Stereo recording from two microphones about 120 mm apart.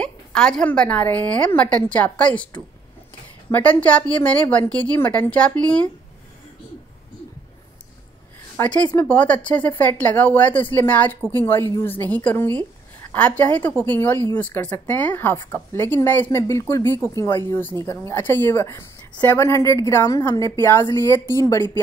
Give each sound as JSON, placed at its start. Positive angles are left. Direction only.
{"t": 0.0, "sound": "a woman's voice", "side_deg": 5}
{"t": 8.5, "sound": "a woman's voice", "side_deg": 10}